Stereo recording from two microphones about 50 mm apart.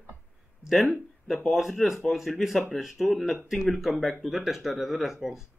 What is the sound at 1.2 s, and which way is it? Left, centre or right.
Speech, centre.